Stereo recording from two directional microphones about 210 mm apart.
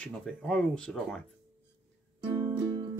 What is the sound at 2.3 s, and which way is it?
Music, 20° right (ahead or behind).